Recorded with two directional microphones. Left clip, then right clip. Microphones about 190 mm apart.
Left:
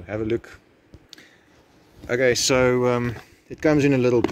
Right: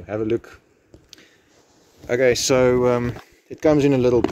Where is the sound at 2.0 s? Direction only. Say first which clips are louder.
Right 2 dB; 5° right (ahead or behind).